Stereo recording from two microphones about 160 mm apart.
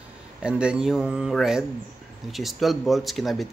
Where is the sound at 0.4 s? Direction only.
5° right (ahead or behind).